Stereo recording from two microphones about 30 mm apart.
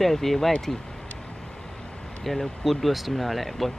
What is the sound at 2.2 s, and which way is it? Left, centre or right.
Speech, centre.